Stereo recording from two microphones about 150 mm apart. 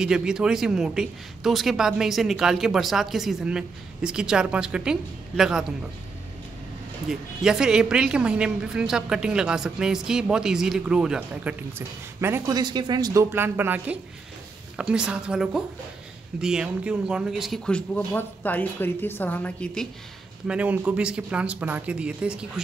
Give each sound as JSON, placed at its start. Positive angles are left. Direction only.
{"t": 0.0, "sound": "speech", "side_deg": -5}
{"t": 7.1, "sound": "a man's voice", "side_deg": -5}
{"t": 20.4, "sound": "speech", "side_deg": -10}